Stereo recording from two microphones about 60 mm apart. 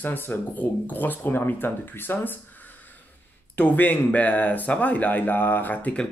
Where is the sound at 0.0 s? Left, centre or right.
Left.